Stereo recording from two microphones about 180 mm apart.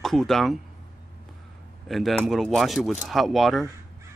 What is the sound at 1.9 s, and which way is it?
Speech, centre (ahead or behind).